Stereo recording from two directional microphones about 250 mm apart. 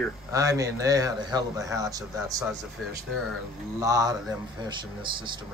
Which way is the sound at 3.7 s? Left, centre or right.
Centre.